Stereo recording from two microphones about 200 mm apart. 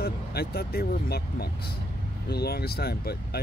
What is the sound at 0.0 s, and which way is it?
Speech, 50° left (ahead or behind).